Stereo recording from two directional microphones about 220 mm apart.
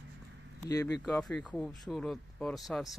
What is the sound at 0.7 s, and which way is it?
Speech, 15° left (ahead or behind).